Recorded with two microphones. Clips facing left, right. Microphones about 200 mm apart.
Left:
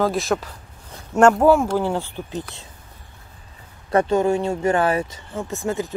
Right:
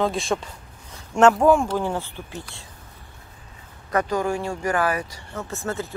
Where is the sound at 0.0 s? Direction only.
Centre (ahead or behind).